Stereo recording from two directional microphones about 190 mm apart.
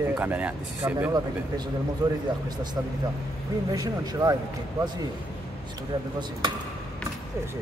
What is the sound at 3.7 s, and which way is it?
Speech, 20° right (ahead or behind).